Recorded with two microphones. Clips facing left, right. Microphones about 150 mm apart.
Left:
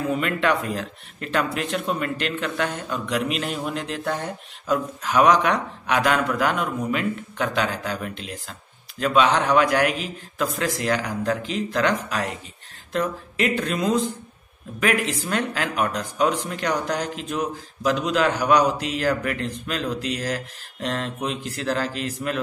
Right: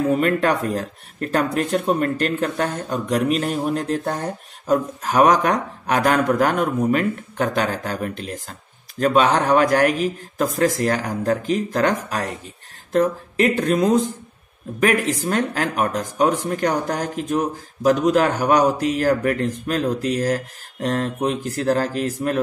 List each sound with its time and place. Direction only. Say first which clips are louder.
0.1 s speech: right 4 dB; 40° right (ahead or behind)